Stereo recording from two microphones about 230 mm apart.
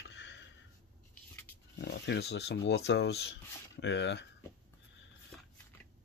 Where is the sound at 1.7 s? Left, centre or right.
Left.